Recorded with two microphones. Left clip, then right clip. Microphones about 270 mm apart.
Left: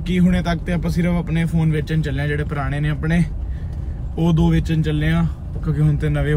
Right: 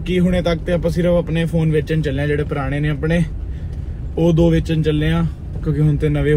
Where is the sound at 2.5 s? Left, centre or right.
Right.